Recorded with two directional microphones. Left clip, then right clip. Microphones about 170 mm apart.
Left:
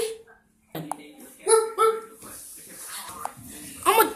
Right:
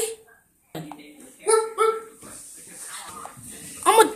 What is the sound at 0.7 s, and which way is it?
Dishes, centre (ahead or behind).